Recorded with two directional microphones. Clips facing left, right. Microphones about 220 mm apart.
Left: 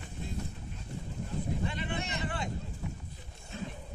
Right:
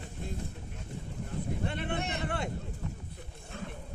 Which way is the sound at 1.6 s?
60° right (ahead or behind).